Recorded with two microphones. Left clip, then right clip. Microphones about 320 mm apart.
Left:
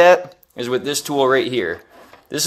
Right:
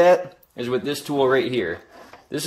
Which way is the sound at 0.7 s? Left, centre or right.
Left.